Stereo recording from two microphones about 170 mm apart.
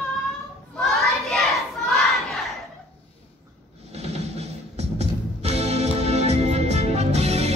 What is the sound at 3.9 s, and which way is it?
Music, 40° right (ahead or behind).